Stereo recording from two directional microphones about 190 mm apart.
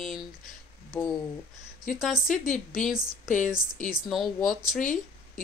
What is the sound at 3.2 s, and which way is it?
Speech, 40° left (ahead or behind).